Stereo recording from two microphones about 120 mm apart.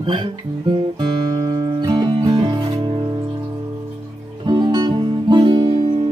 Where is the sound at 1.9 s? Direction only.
35° right (ahead or behind).